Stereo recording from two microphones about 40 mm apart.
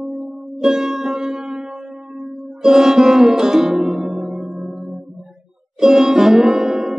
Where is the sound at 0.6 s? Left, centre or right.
Centre.